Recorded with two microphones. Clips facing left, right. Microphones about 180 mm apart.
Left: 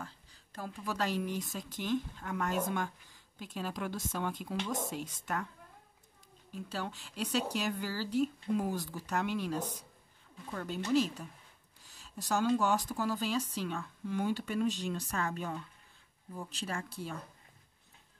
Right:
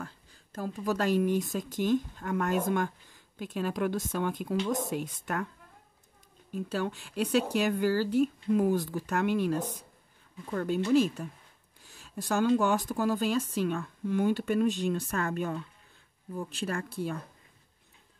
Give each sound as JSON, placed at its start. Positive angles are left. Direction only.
{"t": 0.0, "sound": "speech", "side_deg": -45}
{"t": 6.5, "sound": "speech", "side_deg": -50}